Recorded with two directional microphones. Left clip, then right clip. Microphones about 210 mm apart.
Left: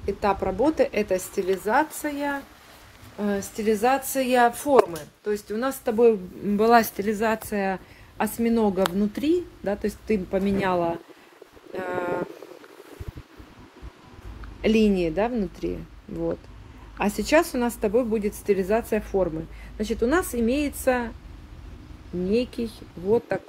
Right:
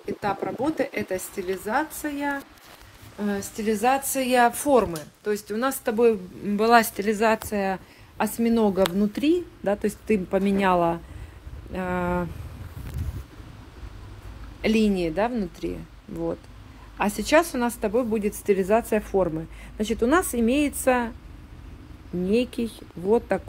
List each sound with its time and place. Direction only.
0.0 s a sound: centre (ahead or behind)
0.7 s speech: centre (ahead or behind)
1.7 s speech: 10° right (ahead or behind)
3.2 s speech: centre (ahead or behind); by 5.9 s 20° right (ahead or behind)
5.9 s speech: 5° right (ahead or behind)
14.6 s speech: centre (ahead or behind)
17.3 s speech: centre (ahead or behind)
18.2 s speech: 15° right (ahead or behind)
22.3 s speech: 15° right (ahead or behind)